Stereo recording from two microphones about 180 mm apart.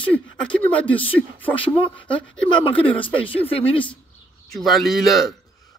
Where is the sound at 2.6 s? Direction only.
30° left (ahead or behind).